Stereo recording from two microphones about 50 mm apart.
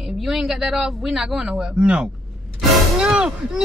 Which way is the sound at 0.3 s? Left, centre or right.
Centre.